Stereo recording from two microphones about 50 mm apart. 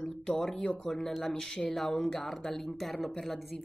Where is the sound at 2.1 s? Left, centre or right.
Centre.